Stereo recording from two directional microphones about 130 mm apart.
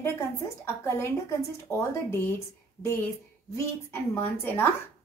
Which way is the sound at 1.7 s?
20° left (ahead or behind).